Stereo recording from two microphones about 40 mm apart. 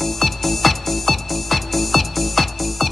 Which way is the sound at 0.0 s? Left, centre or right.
Centre.